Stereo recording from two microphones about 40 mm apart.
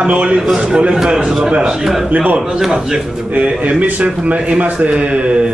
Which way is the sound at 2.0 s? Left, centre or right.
Right.